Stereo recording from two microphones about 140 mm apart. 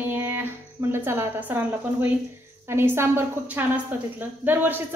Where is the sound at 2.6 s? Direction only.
15° right (ahead or behind).